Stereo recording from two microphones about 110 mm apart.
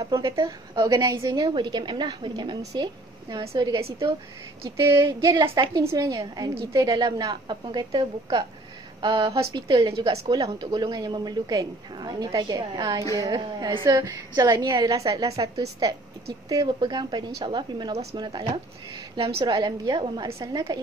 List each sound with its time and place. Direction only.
0.0 s a woman's voice: 30° right (ahead or behind)
5.2 s a woman's voice: 25° right (ahead or behind); by 9.8 s 50° right (ahead or behind)
10.2 s a woman's voice: 35° right (ahead or behind)
19.1 s a woman's voice: 60° right (ahead or behind)
19.4 s a woman's voice: 40° right (ahead or behind)